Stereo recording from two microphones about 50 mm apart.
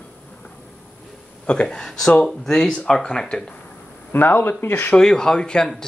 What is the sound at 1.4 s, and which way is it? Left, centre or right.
Speech, centre.